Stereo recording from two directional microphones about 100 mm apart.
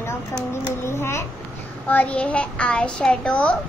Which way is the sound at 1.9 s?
15° left (ahead or behind).